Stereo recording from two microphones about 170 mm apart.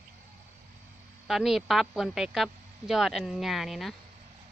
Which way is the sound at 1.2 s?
Centre (ahead or behind).